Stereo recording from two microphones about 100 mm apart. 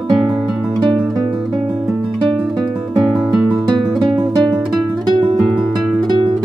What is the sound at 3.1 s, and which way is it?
Guitar, 5° right (ahead or behind).